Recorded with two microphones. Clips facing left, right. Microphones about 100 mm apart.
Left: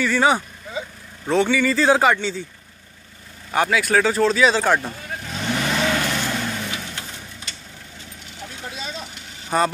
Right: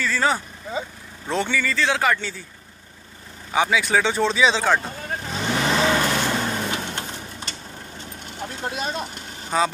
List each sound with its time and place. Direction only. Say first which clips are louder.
0.0 s speech: left 4 dB; 15° left (ahead or behind)
1.8 s speech: left 6 dB; 35° left (ahead or behind)
2.0 s speech: left 4 dB; 20° left (ahead or behind)
3.5 s speech: left 1 dB; centre (ahead or behind)
5.3 s vehicle: right 1 dB; 25° right (ahead or behind); by 7.0 s 40° right (ahead or behind)
8.0 s vehicle: right 5 dB; 50° right (ahead or behind)